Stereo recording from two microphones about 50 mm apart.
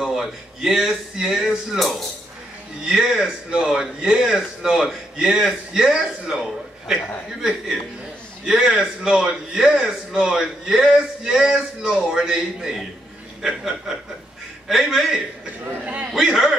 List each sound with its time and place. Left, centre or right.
0.0 s a man's voice: centre
2.8 s a man's voice: centre
8.5 s a man's voice: centre
15.8 s a man's voice: right
16.1 s a man's voice: centre